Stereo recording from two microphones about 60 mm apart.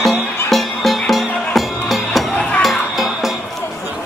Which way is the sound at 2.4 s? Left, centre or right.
Centre.